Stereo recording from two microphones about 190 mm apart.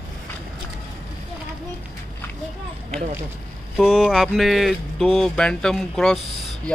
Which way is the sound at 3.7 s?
Centre (ahead or behind).